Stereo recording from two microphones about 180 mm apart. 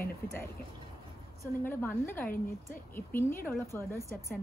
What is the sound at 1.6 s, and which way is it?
A woman's voice, 10° left (ahead or behind).